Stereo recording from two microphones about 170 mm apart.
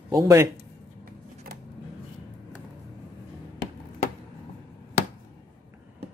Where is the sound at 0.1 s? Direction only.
20° right (ahead or behind).